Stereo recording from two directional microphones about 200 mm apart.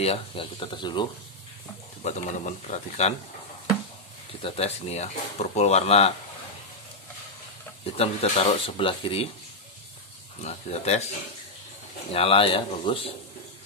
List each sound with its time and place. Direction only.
0.0 s speech: 30° left (ahead or behind)
2.0 s speech: 35° left (ahead or behind)
4.4 s speech: 30° left (ahead or behind)
7.8 s speech: 30° left (ahead or behind)
10.4 s speech: 35° left (ahead or behind)
12.1 s speech: 30° left (ahead or behind)